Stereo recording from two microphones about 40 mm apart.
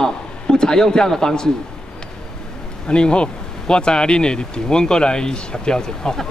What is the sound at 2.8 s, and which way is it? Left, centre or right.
Speech, left.